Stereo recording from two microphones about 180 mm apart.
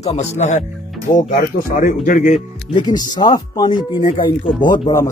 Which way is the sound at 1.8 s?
45° left (ahead or behind).